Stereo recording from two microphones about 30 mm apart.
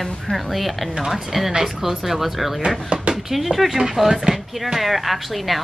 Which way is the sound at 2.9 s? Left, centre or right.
Right.